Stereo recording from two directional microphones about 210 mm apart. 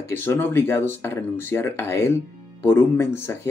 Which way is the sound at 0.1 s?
10° left (ahead or behind).